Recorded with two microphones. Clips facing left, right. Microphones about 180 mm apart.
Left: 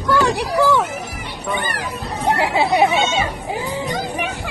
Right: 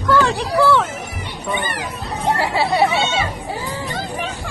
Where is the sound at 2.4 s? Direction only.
15° left (ahead or behind).